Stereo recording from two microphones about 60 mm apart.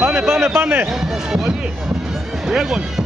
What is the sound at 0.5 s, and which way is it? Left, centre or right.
Speech, right.